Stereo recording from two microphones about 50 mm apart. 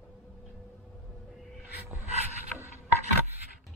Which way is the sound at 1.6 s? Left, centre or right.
Right.